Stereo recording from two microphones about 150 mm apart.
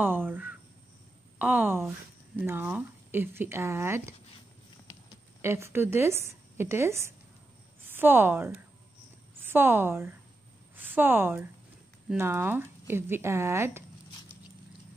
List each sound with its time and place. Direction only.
0.0 s speech: 15° right (ahead or behind)
5.4 s speech: 15° right (ahead or behind)